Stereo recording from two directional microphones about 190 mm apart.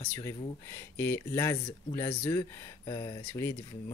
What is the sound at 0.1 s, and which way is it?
Speech, 15° left (ahead or behind).